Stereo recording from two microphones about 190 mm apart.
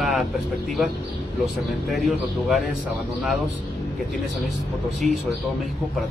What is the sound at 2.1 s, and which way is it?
Speech, centre (ahead or behind).